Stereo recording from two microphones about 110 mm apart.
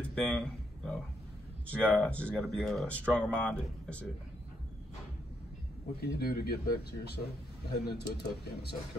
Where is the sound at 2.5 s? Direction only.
Centre (ahead or behind).